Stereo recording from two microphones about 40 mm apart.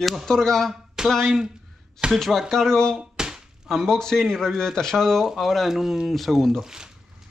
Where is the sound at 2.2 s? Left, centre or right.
Centre.